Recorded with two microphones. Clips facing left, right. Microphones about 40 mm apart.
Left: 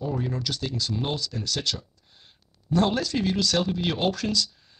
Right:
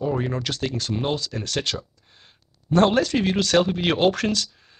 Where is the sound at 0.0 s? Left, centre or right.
Right.